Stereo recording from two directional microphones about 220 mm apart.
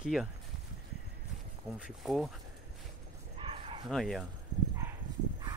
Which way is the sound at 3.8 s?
Centre (ahead or behind).